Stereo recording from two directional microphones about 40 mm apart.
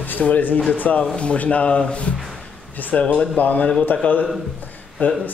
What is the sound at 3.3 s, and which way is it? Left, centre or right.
A man's voice, left.